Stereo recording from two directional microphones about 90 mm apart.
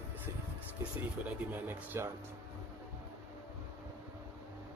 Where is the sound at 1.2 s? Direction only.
20° right (ahead or behind).